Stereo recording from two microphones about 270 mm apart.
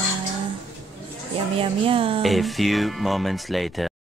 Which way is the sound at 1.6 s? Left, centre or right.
Centre.